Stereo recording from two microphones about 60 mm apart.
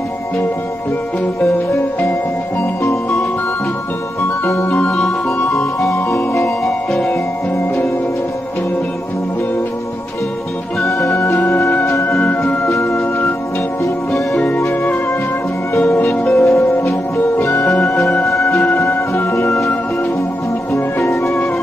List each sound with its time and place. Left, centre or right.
2.8 s music: left
4.6 s music: left
5.9 s music: left
10.9 s music: left
14.7 s music: left
16.1 s music: centre
16.4 s music: left
17.4 s music: left
17.8 s music: centre
18.3 s music: left
20.7 s music: left